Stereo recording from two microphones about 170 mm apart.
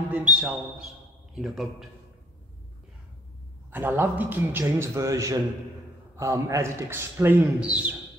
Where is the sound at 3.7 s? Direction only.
10° right (ahead or behind).